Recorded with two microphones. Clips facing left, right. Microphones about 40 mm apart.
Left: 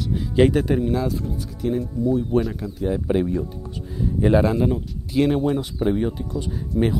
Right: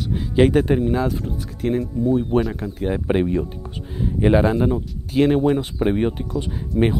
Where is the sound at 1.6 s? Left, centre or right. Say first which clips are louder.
Right 2 dB; right.